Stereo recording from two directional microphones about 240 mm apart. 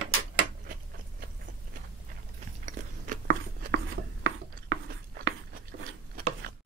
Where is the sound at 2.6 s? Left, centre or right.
Right.